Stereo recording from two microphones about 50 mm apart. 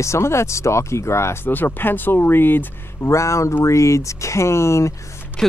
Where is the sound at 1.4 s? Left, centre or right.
Left.